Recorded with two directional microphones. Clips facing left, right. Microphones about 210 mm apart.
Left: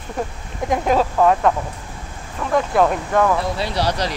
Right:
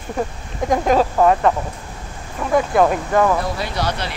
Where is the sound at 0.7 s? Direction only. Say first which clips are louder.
Right 2 dB; centre (ahead or behind).